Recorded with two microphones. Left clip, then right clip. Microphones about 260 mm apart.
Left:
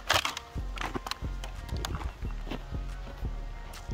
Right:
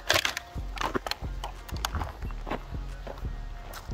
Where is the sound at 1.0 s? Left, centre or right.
Centre.